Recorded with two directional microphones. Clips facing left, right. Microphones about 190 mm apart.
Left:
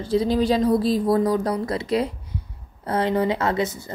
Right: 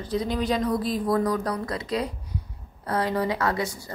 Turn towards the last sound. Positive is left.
turn(degrees=20)  # may be behind; listen again after turning